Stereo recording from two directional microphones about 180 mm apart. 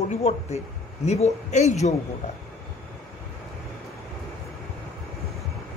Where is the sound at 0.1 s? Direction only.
35° left (ahead or behind).